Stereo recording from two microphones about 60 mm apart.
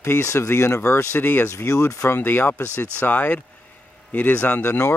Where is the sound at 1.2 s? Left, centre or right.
Left.